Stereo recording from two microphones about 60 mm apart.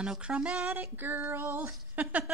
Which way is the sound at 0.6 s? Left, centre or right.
Right.